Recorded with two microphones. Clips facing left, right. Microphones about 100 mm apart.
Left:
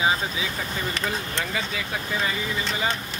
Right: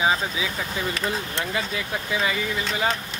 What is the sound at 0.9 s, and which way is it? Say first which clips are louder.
Speech: right 1 dB; 5° right (ahead or behind).